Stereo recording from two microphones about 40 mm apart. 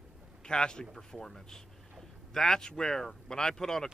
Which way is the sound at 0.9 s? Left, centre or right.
Centre.